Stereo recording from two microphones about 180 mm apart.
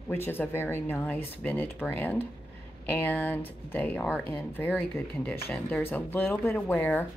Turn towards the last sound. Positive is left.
turn(degrees=10)  # may be behind; listen again after turning